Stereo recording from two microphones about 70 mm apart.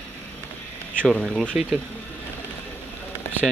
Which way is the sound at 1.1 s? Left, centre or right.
Centre.